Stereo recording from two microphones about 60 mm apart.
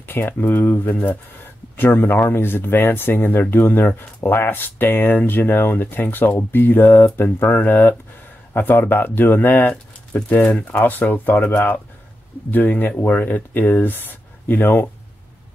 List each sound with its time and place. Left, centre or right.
0.1 s speech: left
10.4 s speech: left